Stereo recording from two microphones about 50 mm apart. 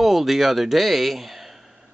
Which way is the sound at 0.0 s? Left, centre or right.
Centre.